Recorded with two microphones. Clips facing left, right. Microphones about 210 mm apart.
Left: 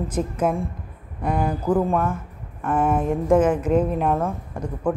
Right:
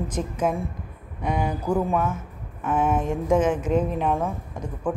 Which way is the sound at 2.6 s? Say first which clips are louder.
Left 2 dB; 5° right (ahead or behind).